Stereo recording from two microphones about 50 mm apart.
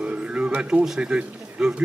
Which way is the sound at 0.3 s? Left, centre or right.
Right.